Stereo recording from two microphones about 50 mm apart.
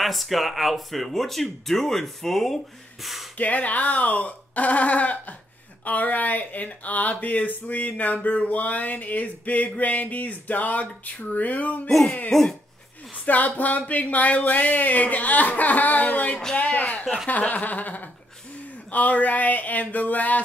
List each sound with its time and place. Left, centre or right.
0.0 s speech: centre
3.3 s speech: left
11.9 s a sound: centre
13.2 s speech: left